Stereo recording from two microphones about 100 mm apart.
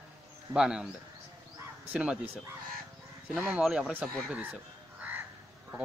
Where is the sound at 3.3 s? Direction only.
5° right (ahead or behind).